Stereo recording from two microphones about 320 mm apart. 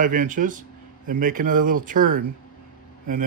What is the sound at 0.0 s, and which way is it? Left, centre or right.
Speech, right.